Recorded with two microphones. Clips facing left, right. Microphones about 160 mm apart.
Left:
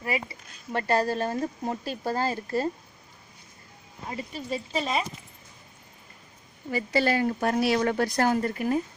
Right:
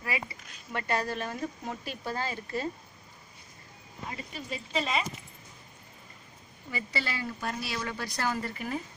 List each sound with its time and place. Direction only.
0.0 s speech: 30° left (ahead or behind)
4.5 s speech: 40° left (ahead or behind)
6.7 s speech: 50° left (ahead or behind)